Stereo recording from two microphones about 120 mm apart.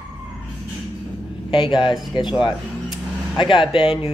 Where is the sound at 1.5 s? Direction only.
40° left (ahead or behind).